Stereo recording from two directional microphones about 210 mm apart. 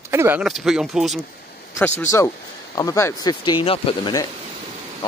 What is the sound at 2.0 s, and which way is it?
Speech, 15° left (ahead or behind).